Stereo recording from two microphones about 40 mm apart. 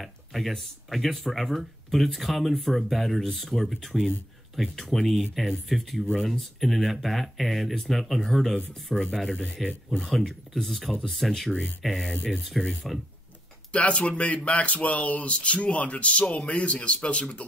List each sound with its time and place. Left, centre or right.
0.0 s a sound: centre
0.8 s speech: centre
13.7 s speech: left